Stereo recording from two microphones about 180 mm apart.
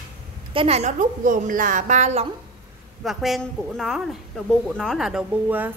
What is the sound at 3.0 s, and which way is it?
A woman's voice, centre (ahead or behind).